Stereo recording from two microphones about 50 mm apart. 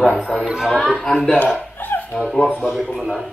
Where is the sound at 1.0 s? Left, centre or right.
Centre.